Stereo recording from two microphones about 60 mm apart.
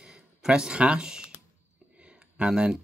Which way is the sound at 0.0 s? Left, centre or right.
Centre.